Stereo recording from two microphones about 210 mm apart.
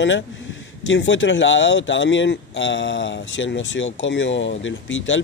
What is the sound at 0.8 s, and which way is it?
Speech, 65° left (ahead or behind).